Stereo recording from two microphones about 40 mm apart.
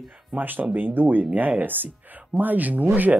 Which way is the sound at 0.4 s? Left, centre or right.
Right.